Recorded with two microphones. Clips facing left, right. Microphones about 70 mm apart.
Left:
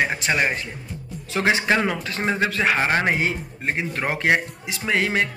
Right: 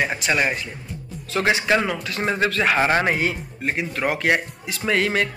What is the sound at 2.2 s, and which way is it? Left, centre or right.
Speech, centre.